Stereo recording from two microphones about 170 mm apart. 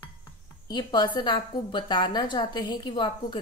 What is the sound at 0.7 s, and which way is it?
A woman's voice, 25° left (ahead or behind).